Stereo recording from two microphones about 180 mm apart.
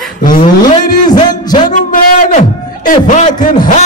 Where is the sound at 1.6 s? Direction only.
45° left (ahead or behind).